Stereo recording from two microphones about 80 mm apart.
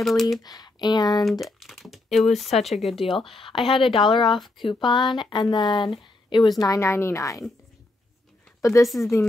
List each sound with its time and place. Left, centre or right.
0.0 s speech: centre
0.4 s speech: left
1.4 s speech: centre
3.1 s speech: left
6.8 s a woman's voice: left
8.5 s speech: left
8.8 s speech: centre